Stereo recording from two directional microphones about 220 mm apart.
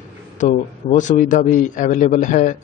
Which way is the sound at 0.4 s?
35° left (ahead or behind).